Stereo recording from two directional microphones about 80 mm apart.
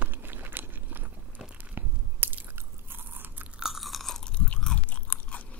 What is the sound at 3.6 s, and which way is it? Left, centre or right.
Chewing, centre.